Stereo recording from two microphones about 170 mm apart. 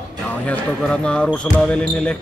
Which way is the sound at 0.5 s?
5° left (ahead or behind).